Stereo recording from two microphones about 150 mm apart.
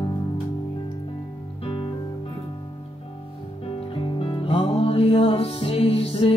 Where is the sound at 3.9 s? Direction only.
35° left (ahead or behind).